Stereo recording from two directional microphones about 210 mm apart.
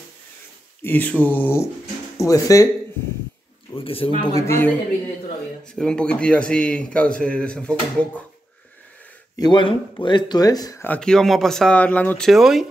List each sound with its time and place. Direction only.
0.8 s speech: 10° left (ahead or behind)
3.7 s speech: 25° left (ahead or behind)
5.8 s speech: 5° left (ahead or behind)
9.4 s speech: 20° left (ahead or behind); by 12.6 s centre (ahead or behind)